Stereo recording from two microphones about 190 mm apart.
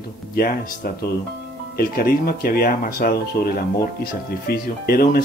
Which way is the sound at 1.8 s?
55° left (ahead or behind).